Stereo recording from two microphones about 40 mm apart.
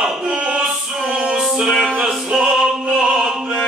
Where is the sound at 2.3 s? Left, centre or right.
Centre.